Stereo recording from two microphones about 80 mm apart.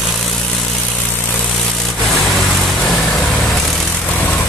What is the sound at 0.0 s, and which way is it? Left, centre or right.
Vehicle, centre.